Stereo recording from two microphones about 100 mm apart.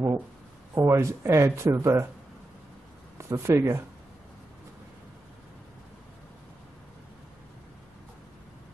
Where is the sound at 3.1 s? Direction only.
25° right (ahead or behind).